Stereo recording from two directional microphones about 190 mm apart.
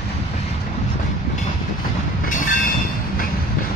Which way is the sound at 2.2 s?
45° left (ahead or behind).